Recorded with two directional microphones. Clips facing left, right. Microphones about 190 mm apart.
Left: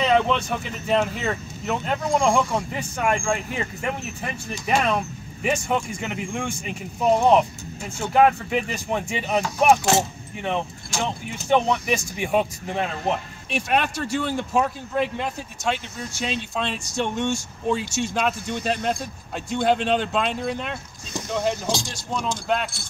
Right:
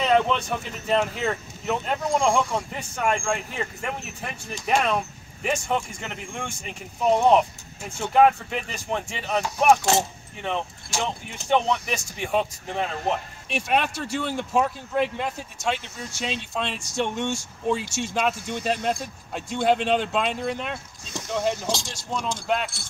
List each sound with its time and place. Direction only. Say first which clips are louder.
0.0 s speech: left 1 dB; centre (ahead or behind)